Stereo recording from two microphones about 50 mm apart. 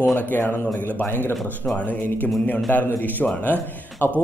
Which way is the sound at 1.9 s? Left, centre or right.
Left.